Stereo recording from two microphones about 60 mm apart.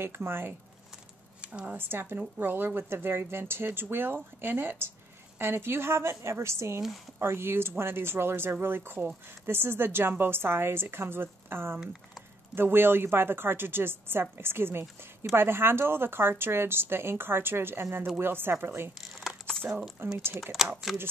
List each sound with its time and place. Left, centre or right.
0.0 s speech: right
1.4 s speech: right
1.8 s a woman's voice: right
17.9 s a woman's voice: right
18.2 s speech: right
18.9 s crumpling: centre
20.0 s speech: right
20.6 s speech: centre